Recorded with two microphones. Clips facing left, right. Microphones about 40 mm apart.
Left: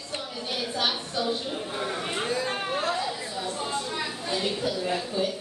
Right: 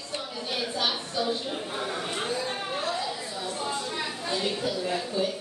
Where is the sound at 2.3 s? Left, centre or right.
Left.